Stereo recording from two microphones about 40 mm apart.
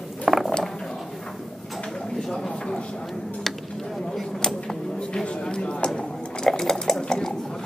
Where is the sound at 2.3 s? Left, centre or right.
Centre.